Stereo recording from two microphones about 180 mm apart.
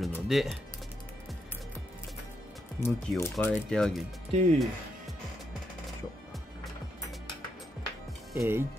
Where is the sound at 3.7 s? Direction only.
5° left (ahead or behind).